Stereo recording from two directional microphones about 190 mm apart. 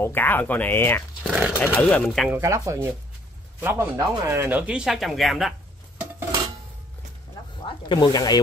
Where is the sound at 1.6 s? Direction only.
5° left (ahead or behind).